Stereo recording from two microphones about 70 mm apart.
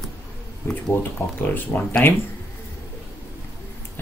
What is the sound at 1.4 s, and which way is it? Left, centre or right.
Speech, left.